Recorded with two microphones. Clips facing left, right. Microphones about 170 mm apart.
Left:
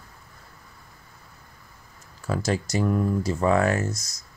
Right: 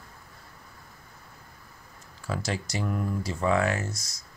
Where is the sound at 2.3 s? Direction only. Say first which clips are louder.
Left 6 dB; 45° left (ahead or behind).